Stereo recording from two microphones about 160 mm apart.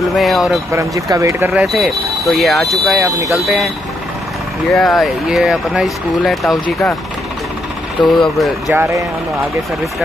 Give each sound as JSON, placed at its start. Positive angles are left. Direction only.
{"t": 0.1, "sound": "speech", "side_deg": 0}
{"t": 0.7, "sound": "speech", "side_deg": -20}
{"t": 1.5, "sound": "speech", "side_deg": 0}
{"t": 8.0, "sound": "speech", "side_deg": 0}
{"t": 8.7, "sound": "speech", "side_deg": -15}